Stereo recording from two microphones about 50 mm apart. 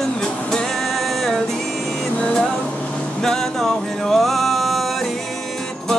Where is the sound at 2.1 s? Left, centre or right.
Centre.